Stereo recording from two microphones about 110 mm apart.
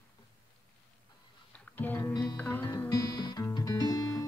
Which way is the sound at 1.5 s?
15° left (ahead or behind).